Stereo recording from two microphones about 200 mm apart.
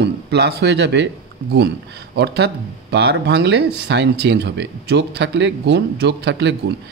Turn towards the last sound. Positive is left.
turn(degrees=-60)  # may be behind; listen again after turning